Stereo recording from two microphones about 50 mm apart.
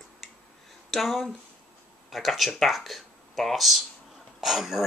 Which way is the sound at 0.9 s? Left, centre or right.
Centre.